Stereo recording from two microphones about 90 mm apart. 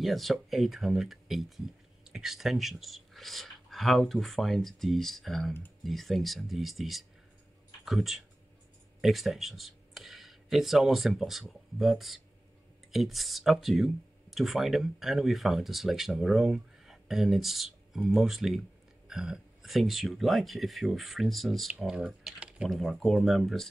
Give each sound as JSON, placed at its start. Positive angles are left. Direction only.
{"t": 0.0, "sound": "speech", "side_deg": 0}
{"t": 22.7, "sound": "speech", "side_deg": 0}